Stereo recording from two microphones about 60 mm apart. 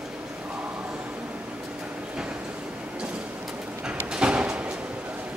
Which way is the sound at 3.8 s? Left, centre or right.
Centre.